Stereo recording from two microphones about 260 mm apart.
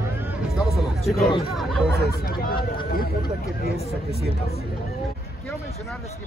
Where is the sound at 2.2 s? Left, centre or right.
Left.